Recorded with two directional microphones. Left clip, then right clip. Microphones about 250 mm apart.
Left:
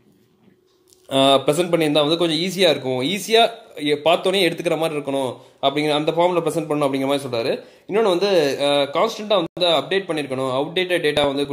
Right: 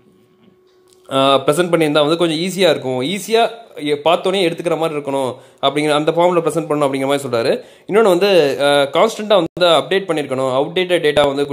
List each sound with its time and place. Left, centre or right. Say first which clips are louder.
1.0 s a man's voice: right 3 dB; centre